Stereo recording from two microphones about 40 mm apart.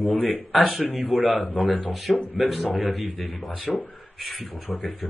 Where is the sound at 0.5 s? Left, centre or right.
Centre.